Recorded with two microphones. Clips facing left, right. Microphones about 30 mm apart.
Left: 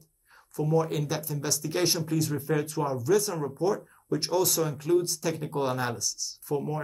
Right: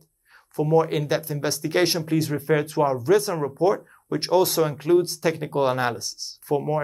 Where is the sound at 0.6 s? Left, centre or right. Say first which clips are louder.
Right 6 dB; right.